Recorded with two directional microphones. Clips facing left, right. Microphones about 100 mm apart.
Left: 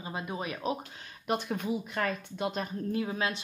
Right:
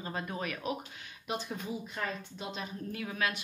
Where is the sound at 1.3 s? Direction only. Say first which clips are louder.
Left 6 dB; 55° left (ahead or behind).